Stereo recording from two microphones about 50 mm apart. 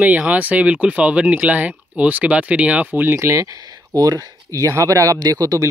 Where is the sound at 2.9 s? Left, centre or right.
Right.